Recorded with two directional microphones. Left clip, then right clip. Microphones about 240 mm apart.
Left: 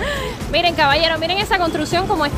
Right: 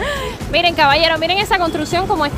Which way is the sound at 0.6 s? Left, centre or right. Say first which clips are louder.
Right 2 dB; centre.